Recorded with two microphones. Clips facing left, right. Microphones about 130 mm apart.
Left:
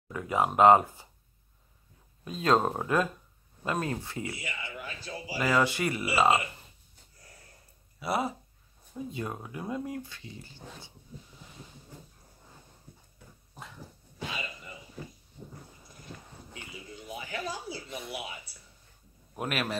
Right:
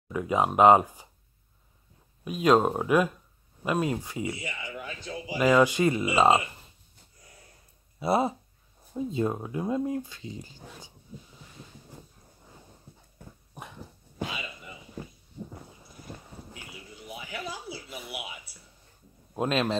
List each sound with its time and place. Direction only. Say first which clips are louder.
0.1 s speech: right 3 dB; 20° right (ahead or behind)
2.2 s speech: right 4 dB; 15° right (ahead or behind)
8.0 s speech: right 5 dB; 25° right (ahead or behind)
13.6 s dog: right 3 dB; 20° right (ahead or behind)
16.5 s a sound: left 1 dB; 5° right (ahead or behind)
19.3 s speech: right 6 dB; 25° right (ahead or behind)